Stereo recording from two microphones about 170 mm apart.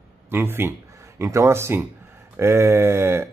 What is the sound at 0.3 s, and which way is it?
Speech, 15° right (ahead or behind).